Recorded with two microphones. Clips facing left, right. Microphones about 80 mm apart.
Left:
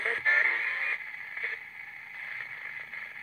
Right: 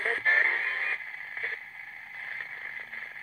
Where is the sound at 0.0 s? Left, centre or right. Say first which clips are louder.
Right 1 dB; right.